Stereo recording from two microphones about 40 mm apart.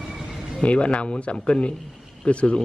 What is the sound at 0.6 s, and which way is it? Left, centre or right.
Speech, left.